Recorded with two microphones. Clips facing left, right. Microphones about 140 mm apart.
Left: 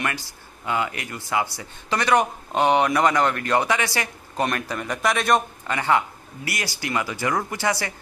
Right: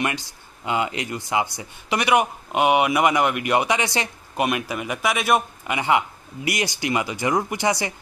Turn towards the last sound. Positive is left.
turn(degrees=-20)  # may be behind; listen again after turning